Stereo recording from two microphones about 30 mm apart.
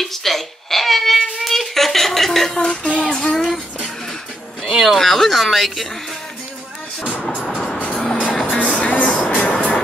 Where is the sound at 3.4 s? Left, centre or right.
Centre.